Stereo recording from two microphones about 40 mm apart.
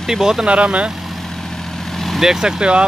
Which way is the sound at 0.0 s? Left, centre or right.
Centre.